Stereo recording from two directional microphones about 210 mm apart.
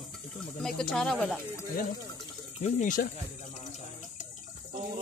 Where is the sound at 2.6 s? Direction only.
40° left (ahead or behind).